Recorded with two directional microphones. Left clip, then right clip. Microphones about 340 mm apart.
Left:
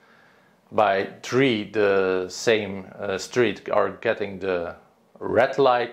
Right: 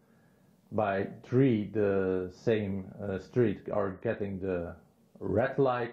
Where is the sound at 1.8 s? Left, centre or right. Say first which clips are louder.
Left 9 dB; left.